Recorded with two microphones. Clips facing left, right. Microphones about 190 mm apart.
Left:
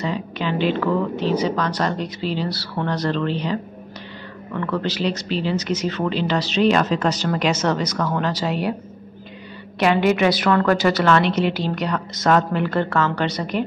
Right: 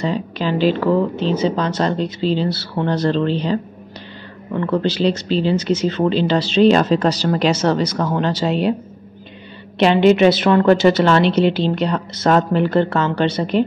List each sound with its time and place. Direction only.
0.0 s speech: 35° right (ahead or behind)
9.8 s speech: 25° right (ahead or behind)